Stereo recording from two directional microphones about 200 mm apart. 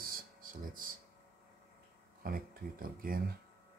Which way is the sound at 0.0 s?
45° right (ahead or behind).